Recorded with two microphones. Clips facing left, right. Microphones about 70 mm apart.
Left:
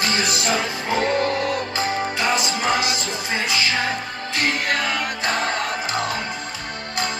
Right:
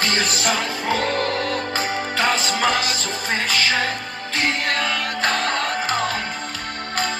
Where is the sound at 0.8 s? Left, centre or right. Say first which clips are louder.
Left 1 dB; centre.